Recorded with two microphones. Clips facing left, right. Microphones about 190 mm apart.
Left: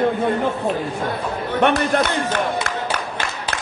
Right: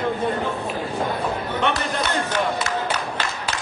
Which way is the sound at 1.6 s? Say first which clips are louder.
Left 9 dB; 55° left (ahead or behind).